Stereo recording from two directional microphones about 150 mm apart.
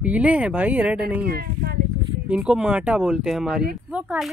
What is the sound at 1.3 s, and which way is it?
Speech, 90° right.